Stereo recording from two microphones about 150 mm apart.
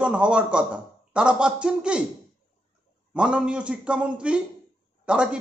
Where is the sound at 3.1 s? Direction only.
5° right (ahead or behind).